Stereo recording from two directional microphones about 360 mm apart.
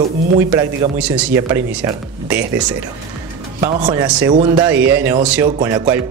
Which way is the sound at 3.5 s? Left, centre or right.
Centre.